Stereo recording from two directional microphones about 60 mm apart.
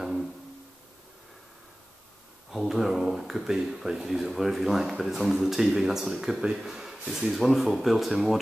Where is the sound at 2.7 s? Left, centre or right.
Centre.